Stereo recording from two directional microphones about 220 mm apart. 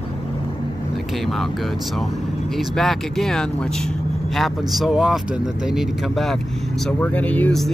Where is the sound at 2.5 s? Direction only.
Centre (ahead or behind).